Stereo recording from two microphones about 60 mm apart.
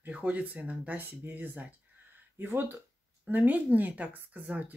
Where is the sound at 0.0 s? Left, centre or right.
Right.